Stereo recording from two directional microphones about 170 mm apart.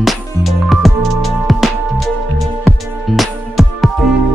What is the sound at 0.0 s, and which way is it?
Music, centre (ahead or behind).